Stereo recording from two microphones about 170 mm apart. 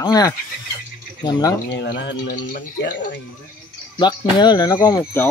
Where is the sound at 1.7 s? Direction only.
90° left.